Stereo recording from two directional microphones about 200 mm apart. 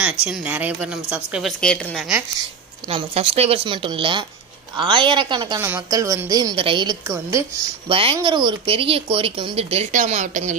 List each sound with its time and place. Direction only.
0.0 s a woman's voice: 5° right (ahead or behind)
2.9 s a woman's voice: 30° right (ahead or behind)